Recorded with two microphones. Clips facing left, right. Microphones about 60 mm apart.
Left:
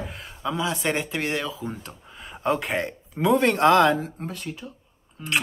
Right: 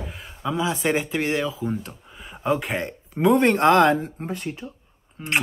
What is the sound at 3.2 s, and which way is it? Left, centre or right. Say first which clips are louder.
Speech: right 2 dB; centre.